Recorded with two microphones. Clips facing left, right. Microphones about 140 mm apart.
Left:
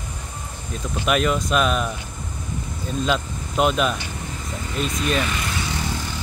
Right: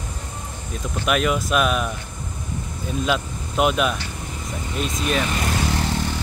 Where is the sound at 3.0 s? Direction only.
5° right (ahead or behind).